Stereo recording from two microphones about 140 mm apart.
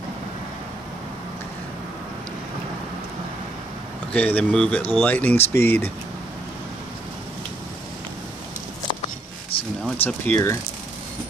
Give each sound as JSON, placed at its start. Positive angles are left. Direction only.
{"t": 4.1, "sound": "speech", "side_deg": 10}
{"t": 9.5, "sound": "a sound", "side_deg": 40}
{"t": 10.0, "sound": "speech", "side_deg": 15}